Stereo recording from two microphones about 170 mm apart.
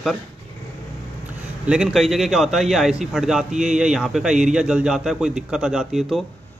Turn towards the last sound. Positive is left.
turn(degrees=0)  # may be behind; listen again after turning